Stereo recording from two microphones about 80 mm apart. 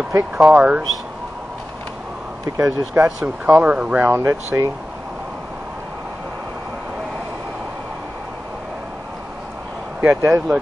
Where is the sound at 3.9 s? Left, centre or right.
Right.